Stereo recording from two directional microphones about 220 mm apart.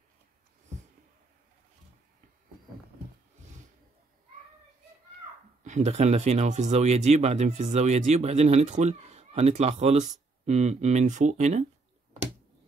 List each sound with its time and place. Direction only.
5.6 s speech: 30° right (ahead or behind)